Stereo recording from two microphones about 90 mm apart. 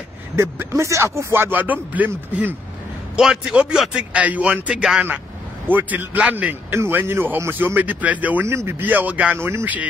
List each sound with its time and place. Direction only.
0.4 s a man's voice: 30° right (ahead or behind)
3.2 s speech: 5° right (ahead or behind)
5.7 s a man's voice: 20° right (ahead or behind)
8.5 s a man's voice: 30° right (ahead or behind)